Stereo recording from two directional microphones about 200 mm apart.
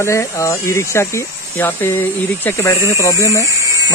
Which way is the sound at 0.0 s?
15° left (ahead or behind).